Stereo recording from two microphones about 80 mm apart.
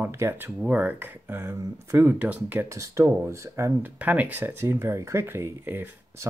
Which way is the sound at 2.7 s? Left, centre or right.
Right.